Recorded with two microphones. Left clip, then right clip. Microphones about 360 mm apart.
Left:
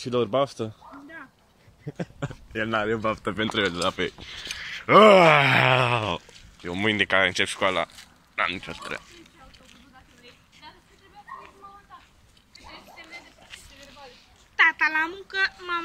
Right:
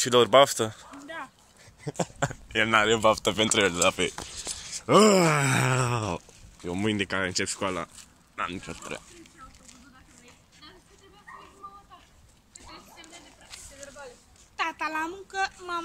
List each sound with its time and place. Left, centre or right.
0.0 s speech: right
2.1 s speech: centre
3.0 s speech: centre
4.3 s groan: centre
14.6 s speech: centre